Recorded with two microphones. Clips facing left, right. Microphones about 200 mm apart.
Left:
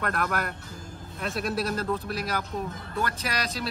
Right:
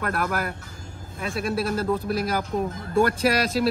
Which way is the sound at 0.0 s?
5° right (ahead or behind).